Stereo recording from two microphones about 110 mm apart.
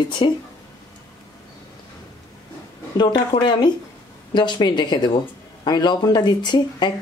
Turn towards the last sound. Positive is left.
turn(degrees=45)  # may be behind; listen again after turning